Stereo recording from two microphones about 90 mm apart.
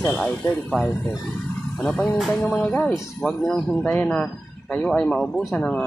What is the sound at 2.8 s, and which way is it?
Speech, 10° left (ahead or behind).